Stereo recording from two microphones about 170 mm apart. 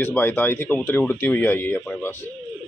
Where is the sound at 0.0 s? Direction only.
10° left (ahead or behind).